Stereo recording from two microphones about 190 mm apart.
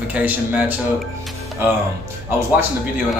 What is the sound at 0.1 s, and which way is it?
Speech, 10° right (ahead or behind).